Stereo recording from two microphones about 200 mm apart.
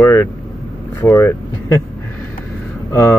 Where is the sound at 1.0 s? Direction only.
15° left (ahead or behind).